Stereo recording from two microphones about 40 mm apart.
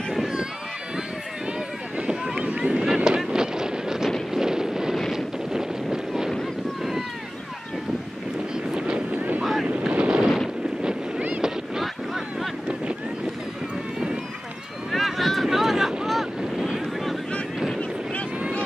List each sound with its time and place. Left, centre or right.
0.1 s a sound: centre
2.0 s a sound: centre
3.3 s wind noise: centre
6.8 s boat: centre
8.7 s boat: right
9.1 s wind noise: right
9.4 s boat: centre
9.9 s a sound: right
10.8 s boat: right
11.8 s a sound: centre
14.9 s boat: centre
16.1 s wind noise: centre